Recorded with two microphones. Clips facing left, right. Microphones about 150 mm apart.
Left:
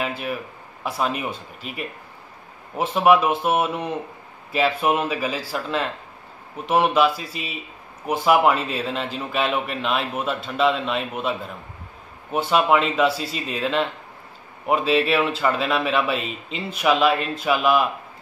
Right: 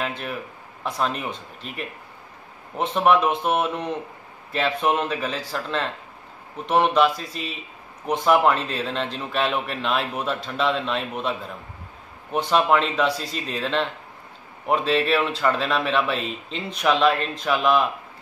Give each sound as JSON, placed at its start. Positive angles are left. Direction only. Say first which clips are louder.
{"t": 0.0, "sound": "a man's voice", "louder": "left 2 dB", "side_deg": 5}